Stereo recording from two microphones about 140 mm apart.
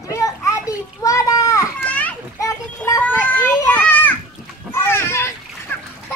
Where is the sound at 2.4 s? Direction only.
25° left (ahead or behind).